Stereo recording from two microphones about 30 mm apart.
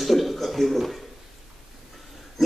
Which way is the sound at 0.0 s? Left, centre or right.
Centre.